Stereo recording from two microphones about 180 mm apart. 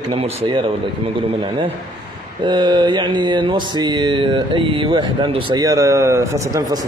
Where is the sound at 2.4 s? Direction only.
25° right (ahead or behind).